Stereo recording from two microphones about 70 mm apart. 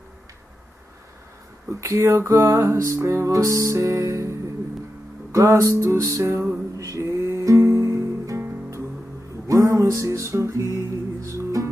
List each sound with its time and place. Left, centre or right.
1.7 s music: right